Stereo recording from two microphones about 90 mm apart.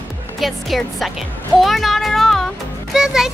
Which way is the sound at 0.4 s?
Centre (ahead or behind).